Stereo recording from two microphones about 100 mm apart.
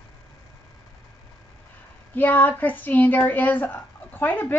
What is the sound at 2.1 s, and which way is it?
Speech, 20° left (ahead or behind).